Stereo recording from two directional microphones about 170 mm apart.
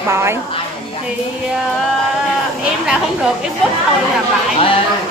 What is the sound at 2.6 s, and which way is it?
Speech, 5° right (ahead or behind).